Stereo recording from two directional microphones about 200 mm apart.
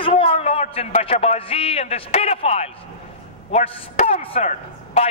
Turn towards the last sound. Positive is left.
turn(degrees=30)  # may be behind; listen again after turning